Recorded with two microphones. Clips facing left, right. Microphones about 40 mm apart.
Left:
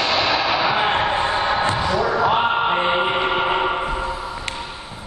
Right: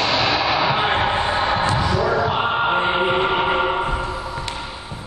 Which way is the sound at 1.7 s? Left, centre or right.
Centre.